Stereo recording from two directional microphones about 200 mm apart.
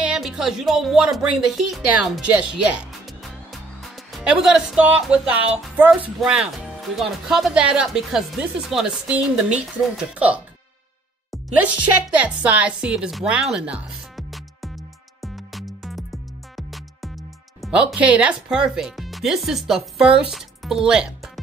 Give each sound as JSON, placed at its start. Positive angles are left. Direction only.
{"t": 0.0, "sound": "speech", "side_deg": -5}
{"t": 11.4, "sound": "speech", "side_deg": -5}
{"t": 15.2, "sound": "music", "side_deg": 0}